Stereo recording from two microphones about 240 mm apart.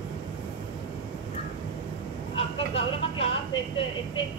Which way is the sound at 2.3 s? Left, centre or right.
Left.